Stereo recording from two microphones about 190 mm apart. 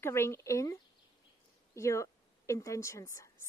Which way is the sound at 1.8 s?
15° left (ahead or behind).